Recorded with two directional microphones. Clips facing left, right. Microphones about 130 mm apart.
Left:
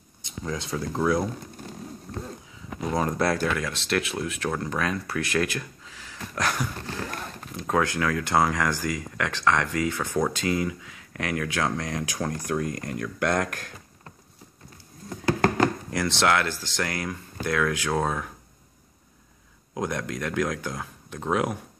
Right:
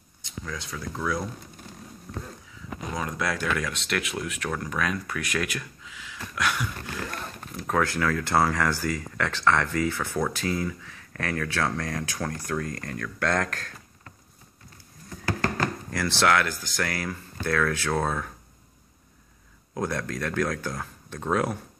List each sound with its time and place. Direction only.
0.2 s speech: 25° left (ahead or behind)
2.9 s speech: 35° left (ahead or behind)
7.5 s speech: 20° left (ahead or behind)
15.5 s speech: 20° left (ahead or behind)
19.7 s speech: 15° left (ahead or behind)